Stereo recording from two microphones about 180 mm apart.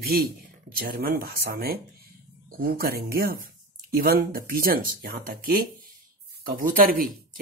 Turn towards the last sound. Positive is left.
turn(degrees=-50)  # may be behind; listen again after turning